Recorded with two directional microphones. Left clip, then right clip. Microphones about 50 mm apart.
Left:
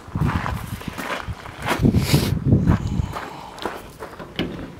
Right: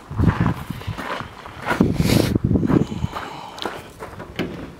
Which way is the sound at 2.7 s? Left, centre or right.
Centre.